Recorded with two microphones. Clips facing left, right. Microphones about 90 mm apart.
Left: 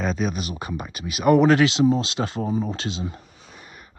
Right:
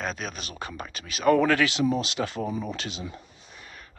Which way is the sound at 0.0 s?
Centre (ahead or behind).